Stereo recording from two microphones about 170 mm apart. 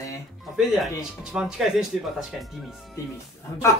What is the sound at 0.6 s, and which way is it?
Speech, centre (ahead or behind).